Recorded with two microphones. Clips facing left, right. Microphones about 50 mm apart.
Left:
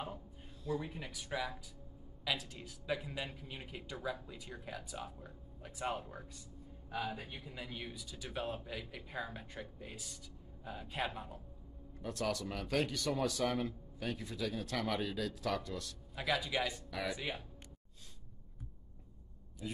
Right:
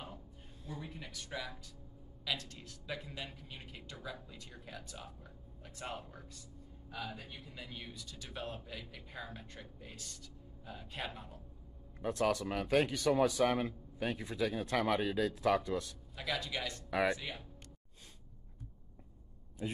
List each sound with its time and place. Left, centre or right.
0.8 s a man's voice: centre
12.0 s a man's voice: right
16.2 s a man's voice: centre
16.9 s a man's voice: right
19.6 s a man's voice: right